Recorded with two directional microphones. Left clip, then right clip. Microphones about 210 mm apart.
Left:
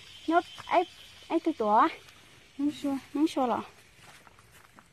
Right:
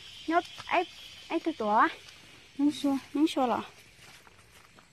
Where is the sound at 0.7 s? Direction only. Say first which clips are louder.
Left 2 dB; 15° left (ahead or behind).